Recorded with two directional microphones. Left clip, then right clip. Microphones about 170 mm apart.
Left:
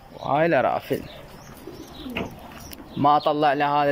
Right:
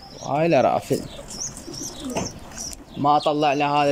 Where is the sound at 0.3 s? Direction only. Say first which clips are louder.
Right 2 dB; 15° right (ahead or behind).